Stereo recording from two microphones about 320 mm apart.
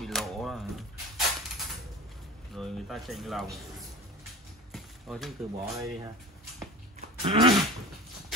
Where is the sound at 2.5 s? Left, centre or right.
Centre.